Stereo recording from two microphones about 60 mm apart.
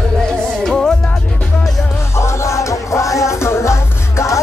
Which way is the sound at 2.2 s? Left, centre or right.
Left.